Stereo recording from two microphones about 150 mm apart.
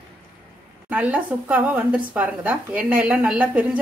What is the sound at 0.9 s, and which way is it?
Speech, 10° right (ahead or behind).